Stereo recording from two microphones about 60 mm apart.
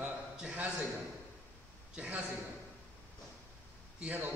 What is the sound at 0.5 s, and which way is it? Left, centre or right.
Speech, right.